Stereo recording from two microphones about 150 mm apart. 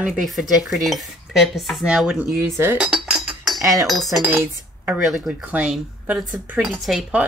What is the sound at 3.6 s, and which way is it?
Speech, 20° right (ahead or behind).